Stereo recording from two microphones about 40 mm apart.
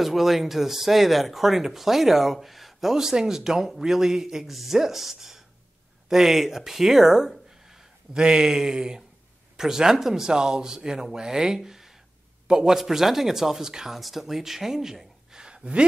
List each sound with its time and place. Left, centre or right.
0.0 s a man's voice: centre; by 15.8 s right